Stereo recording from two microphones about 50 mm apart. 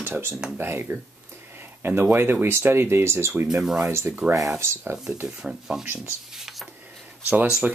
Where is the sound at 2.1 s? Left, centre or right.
Right.